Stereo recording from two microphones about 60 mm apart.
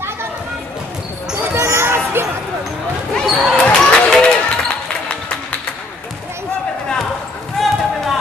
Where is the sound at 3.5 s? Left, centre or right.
Centre.